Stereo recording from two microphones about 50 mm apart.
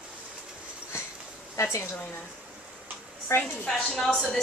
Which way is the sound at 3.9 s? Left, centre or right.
Centre.